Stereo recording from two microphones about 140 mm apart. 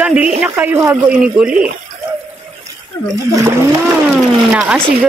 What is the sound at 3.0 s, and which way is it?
Speech, 15° left (ahead or behind).